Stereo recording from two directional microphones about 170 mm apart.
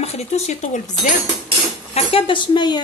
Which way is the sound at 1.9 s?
30° left (ahead or behind).